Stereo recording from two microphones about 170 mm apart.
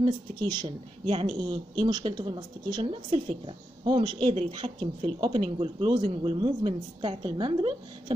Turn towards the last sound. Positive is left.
turn(degrees=-30)  # may be behind; listen again after turning